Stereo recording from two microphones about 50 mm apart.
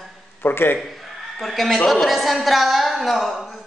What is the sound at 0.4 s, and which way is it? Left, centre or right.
Speech, left.